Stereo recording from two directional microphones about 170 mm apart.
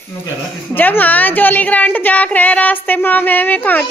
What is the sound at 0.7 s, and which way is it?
A woman's voice, 10° left (ahead or behind).